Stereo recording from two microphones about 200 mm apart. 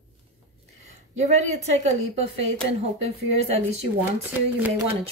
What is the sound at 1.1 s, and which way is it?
Speech, 35° right (ahead or behind).